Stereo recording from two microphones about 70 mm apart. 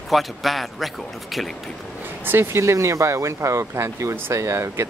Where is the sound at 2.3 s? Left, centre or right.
Right.